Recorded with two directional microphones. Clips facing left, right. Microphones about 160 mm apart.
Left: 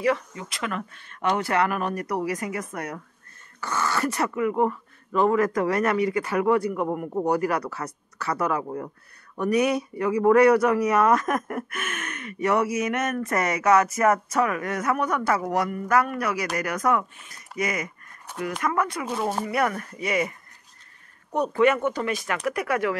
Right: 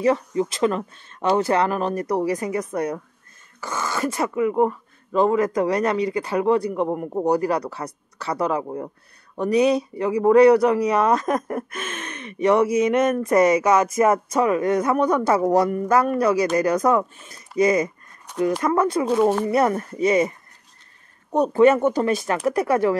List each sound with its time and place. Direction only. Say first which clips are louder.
0.0 s speech: right 5 dB; 30° right (ahead or behind)
3.6 s speech: right 1 dB; 20° right (ahead or behind)
6.0 s speech: right 2 dB; 30° right (ahead or behind)
13.2 s speech: right 8 dB; 15° right (ahead or behind); by 22.9 s 30° right (ahead or behind)